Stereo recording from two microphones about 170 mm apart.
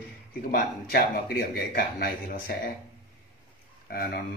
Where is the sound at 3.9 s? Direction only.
60° left (ahead or behind).